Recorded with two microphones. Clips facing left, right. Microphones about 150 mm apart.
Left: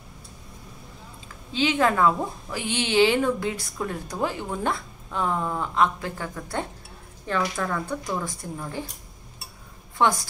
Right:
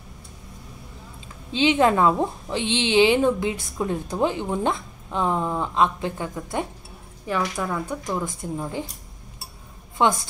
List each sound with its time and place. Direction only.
1.5 s a woman's voice: 20° right (ahead or behind)
10.0 s a woman's voice: 20° right (ahead or behind)